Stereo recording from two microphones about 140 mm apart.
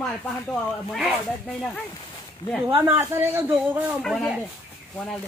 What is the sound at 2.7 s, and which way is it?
A man's voice, 15° right (ahead or behind).